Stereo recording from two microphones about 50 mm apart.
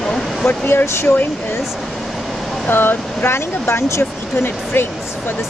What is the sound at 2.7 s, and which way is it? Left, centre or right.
Speech, left.